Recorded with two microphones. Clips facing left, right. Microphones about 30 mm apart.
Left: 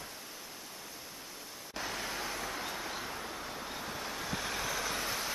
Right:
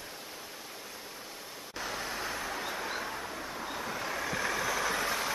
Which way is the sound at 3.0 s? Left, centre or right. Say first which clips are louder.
Right 3 dB; centre.